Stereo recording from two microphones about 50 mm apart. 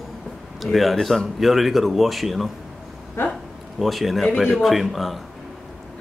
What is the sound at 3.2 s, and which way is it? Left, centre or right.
Speech, left.